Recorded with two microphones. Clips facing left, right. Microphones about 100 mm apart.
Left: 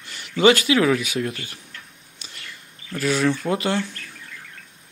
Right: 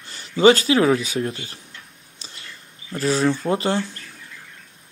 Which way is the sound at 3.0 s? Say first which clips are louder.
Right 1 dB; 30° right (ahead or behind).